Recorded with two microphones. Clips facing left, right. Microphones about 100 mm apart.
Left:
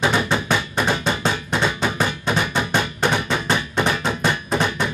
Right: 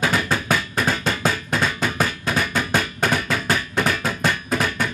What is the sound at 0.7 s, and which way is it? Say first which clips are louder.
Music: left 1 dB; 25° left (ahead or behind).